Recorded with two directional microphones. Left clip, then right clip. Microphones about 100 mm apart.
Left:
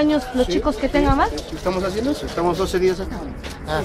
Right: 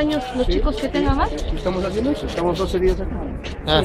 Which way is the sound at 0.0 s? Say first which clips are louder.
Left 2 dB; 40° left (ahead or behind).